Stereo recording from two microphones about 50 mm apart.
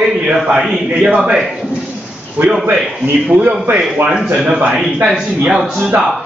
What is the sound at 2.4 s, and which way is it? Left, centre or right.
Speech, right.